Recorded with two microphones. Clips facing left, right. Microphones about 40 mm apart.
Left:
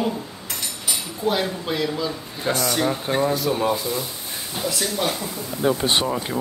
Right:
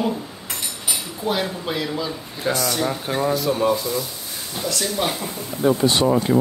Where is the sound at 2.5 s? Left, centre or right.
Left.